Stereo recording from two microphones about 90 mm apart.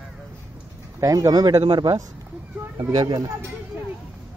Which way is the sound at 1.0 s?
40° right (ahead or behind).